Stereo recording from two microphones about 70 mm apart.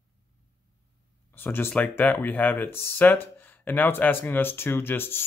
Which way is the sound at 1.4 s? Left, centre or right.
Left.